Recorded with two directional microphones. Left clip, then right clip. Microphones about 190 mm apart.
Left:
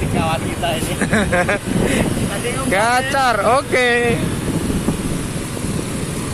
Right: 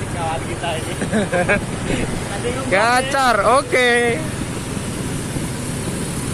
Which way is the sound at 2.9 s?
Centre (ahead or behind).